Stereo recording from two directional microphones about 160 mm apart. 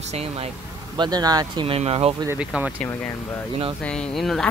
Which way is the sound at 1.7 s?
40° right (ahead or behind).